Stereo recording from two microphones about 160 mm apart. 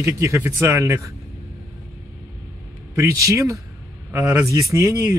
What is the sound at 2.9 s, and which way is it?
Speech, 20° right (ahead or behind).